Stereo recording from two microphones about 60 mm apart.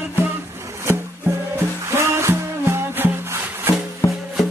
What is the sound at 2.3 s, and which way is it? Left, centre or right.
Music, right.